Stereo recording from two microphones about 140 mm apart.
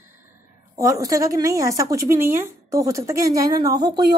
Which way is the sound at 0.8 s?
25° right (ahead or behind).